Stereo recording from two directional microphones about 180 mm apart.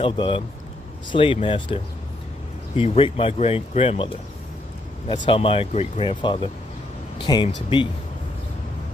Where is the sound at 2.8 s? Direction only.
30° left (ahead or behind).